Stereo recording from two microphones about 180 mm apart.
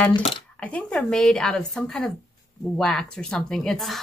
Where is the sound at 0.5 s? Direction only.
5° left (ahead or behind).